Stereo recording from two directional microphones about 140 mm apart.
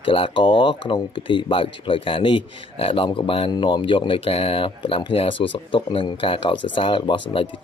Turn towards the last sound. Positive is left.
turn(degrees=40)  # may be behind; listen again after turning